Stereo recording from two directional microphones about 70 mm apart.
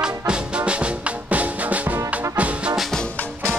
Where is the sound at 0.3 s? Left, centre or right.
Centre.